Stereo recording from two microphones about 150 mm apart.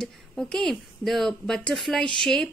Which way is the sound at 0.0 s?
5° left (ahead or behind).